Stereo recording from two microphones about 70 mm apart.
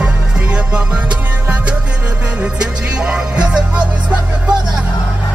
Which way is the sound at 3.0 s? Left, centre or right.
Centre.